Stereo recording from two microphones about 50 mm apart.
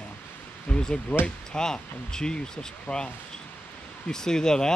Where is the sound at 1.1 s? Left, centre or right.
Left.